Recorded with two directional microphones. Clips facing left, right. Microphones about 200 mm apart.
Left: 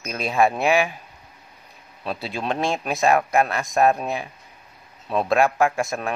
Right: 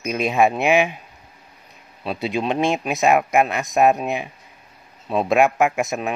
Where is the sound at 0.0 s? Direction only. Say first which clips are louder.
Right 2 dB; 15° right (ahead or behind).